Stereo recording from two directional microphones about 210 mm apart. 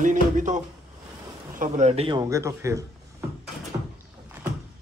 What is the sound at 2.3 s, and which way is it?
Speech, 15° right (ahead or behind).